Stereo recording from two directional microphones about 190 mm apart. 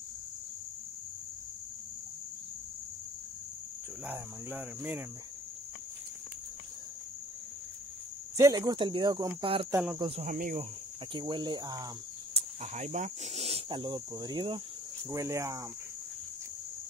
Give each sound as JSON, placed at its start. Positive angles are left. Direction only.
{"t": 4.0, "sound": "cricket", "side_deg": -5}
{"t": 8.4, "sound": "speech", "side_deg": -20}
{"t": 11.1, "sound": "speech", "side_deg": -25}
{"t": 12.4, "sound": "speech", "side_deg": -35}
{"t": 15.0, "sound": "cricket", "side_deg": -15}